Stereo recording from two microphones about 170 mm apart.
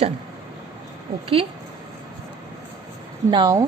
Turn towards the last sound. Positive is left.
turn(degrees=-25)  # may be behind; listen again after turning